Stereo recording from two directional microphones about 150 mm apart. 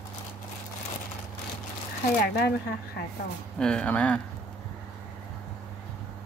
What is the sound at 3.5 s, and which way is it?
Speech, 5° left (ahead or behind).